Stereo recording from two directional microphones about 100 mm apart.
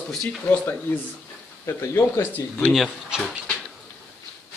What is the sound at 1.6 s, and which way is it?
Speech, 25° left (ahead or behind).